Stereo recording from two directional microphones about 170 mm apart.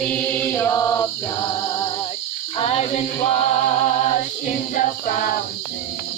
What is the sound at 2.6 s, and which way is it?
Female singing, 40° left (ahead or behind).